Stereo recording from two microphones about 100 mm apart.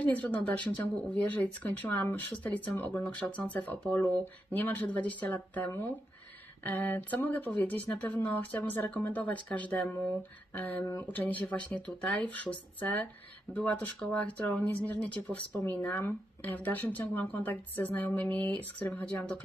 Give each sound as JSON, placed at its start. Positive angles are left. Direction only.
{"t": 0.1, "sound": "speech", "side_deg": 15}